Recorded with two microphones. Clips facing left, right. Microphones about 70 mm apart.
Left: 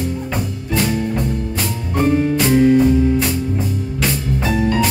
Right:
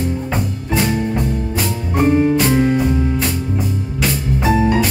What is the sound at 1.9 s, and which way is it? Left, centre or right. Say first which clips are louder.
Music: right 2 dB; centre.